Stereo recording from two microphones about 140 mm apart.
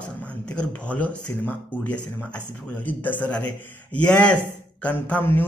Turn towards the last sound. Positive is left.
turn(degrees=15)  # may be behind; listen again after turning